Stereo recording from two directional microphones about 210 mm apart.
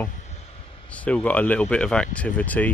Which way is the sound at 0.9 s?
5° left (ahead or behind).